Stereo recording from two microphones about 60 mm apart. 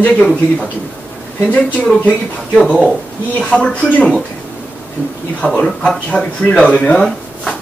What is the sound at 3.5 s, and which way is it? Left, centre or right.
Speech, left.